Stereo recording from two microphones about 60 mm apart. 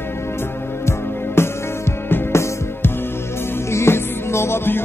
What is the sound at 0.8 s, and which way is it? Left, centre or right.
Music, left.